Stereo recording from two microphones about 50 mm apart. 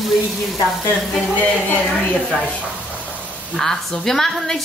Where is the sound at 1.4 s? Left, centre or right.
Left.